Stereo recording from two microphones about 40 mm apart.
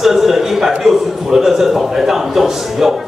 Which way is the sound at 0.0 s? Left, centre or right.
Centre.